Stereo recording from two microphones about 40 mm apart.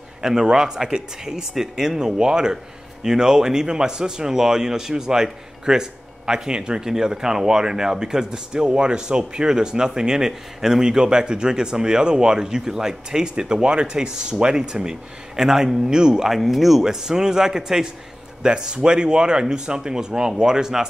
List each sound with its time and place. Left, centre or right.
0.2 s speech: centre
16.3 s speech: centre